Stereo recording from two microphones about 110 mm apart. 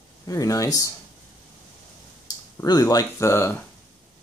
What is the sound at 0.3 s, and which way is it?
Speech, 30° left (ahead or behind).